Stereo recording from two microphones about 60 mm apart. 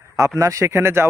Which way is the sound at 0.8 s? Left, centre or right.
Right.